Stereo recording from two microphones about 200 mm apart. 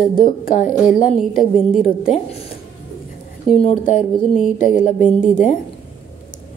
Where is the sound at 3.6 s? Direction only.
35° left (ahead or behind).